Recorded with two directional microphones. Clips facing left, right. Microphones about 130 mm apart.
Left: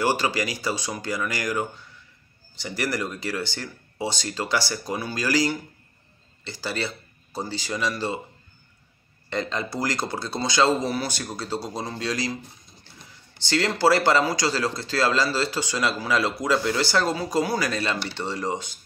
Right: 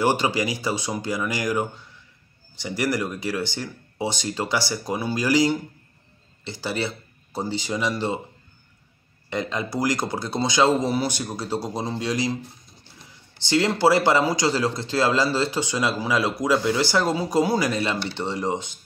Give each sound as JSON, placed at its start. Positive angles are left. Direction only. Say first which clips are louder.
{"t": 0.0, "sound": "a man's voice", "louder": "right 2 dB", "side_deg": -20}
{"t": 9.3, "sound": "a man's voice", "louder": "right 1 dB", "side_deg": -15}
{"t": 13.4, "sound": "a man's voice", "louder": "right 2 dB", "side_deg": -15}